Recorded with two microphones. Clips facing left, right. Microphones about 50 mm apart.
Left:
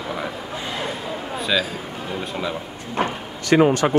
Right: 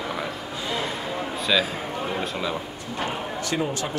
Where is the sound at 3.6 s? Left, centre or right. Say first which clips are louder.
Left 14 dB; left.